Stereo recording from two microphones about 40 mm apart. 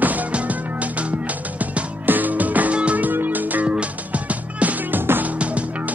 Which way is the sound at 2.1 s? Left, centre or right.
Right.